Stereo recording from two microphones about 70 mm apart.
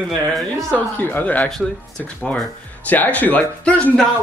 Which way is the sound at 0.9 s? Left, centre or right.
Left.